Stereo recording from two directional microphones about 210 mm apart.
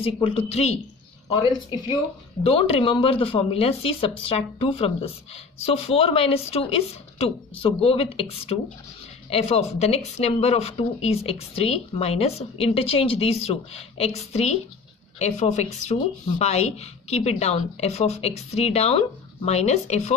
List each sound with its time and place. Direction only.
0.0 s speech: 25° left (ahead or behind)
2.4 s speech: 25° left (ahead or behind)